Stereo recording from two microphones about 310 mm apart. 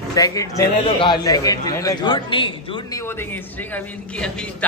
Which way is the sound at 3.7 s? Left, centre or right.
Centre.